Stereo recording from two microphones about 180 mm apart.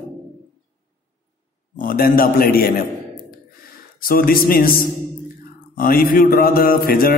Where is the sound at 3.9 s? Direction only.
55° left (ahead or behind).